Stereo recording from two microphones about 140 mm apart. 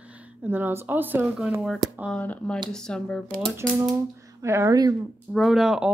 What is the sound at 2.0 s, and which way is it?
Speech, 10° left (ahead or behind).